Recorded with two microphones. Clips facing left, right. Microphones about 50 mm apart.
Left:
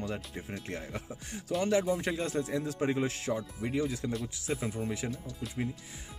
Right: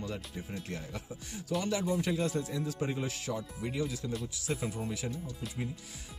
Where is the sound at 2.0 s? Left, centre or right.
Left.